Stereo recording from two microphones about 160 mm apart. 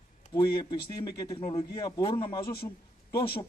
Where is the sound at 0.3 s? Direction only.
25° left (ahead or behind).